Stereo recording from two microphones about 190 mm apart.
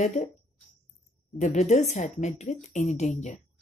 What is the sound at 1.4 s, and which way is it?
A woman's voice, 40° left (ahead or behind).